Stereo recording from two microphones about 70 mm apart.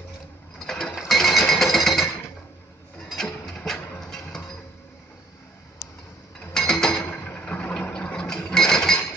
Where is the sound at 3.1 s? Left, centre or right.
Centre.